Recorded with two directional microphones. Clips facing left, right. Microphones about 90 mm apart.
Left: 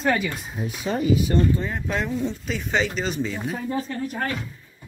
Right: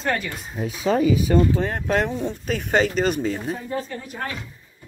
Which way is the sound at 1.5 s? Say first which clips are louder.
Right 3 dB; 65° right (ahead or behind).